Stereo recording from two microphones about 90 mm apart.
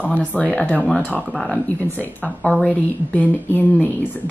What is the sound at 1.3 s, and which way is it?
Speech, 5° left (ahead or behind).